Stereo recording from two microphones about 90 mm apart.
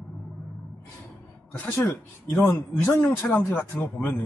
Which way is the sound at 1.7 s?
30° left (ahead or behind).